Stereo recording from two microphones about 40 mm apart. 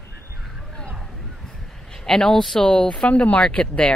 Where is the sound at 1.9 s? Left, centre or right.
Centre; by 3.4 s left.